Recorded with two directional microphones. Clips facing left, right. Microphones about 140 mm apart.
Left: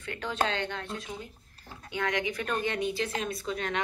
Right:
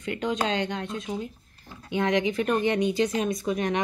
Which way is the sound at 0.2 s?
15° right (ahead or behind).